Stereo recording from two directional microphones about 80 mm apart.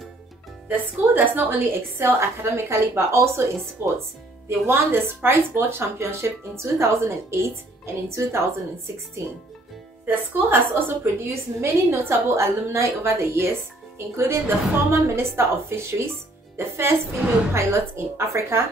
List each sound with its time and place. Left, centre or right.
0.7 s a woman's voice: right
10.0 s a woman's voice: right
17.2 s a woman's voice: centre
17.6 s a woman's voice: right